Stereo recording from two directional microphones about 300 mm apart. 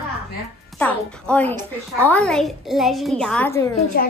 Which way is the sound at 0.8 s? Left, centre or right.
Centre.